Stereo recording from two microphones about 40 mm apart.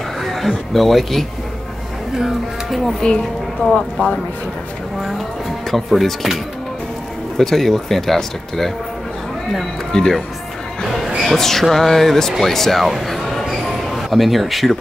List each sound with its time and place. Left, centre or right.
0.2 s speech: centre
3.0 s speech: left
5.9 s speech: centre
11.3 s speech: centre
13.0 s a sound: centre